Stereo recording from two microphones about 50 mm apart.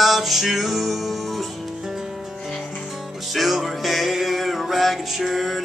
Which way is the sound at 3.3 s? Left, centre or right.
Centre.